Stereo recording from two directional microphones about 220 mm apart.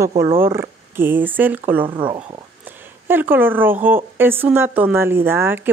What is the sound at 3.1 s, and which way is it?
A woman's voice, 10° right (ahead or behind).